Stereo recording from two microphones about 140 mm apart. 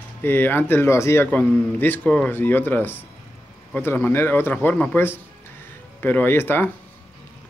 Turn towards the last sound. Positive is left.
turn(degrees=15)  # may be behind; listen again after turning